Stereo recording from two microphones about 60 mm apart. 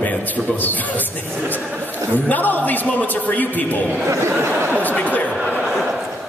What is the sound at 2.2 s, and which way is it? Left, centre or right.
A man's voice, left.